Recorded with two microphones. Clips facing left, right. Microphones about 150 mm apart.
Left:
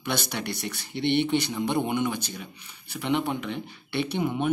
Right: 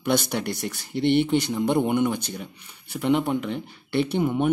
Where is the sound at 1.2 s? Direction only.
10° right (ahead or behind).